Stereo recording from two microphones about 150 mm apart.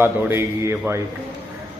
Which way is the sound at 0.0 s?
15° right (ahead or behind).